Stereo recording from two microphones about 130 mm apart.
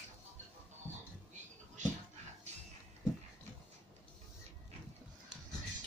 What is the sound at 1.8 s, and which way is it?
Dog, 65° right (ahead or behind).